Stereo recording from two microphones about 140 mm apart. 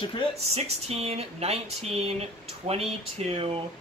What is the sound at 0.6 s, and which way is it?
Speech, 45° right (ahead or behind).